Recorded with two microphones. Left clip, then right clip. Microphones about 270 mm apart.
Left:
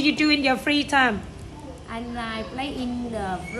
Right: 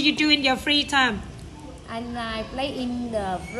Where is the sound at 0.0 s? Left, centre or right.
Centre.